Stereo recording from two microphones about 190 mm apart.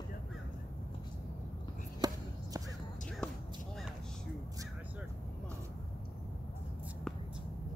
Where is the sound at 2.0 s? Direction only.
20° right (ahead or behind).